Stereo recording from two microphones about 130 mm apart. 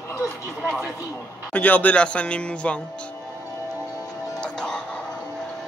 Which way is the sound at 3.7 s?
20° right (ahead or behind).